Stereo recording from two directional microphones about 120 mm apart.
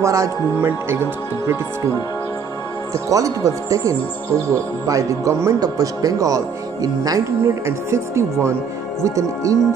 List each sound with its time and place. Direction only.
0.0 s speech: 25° right (ahead or behind)
2.9 s speech: 30° right (ahead or behind)